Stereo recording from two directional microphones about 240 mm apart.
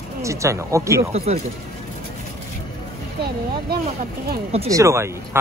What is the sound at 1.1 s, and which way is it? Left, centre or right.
Speech, right.